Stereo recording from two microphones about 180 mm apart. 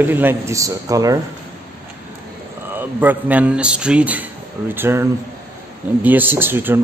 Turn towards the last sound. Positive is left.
turn(degrees=-10)  # may be behind; listen again after turning